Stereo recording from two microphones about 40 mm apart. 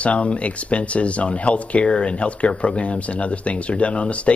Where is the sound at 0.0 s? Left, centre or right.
Left.